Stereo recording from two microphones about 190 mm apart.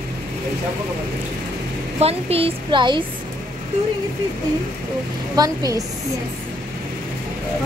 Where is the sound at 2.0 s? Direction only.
30° right (ahead or behind).